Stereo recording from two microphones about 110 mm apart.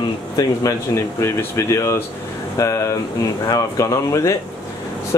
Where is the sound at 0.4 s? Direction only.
30° left (ahead or behind).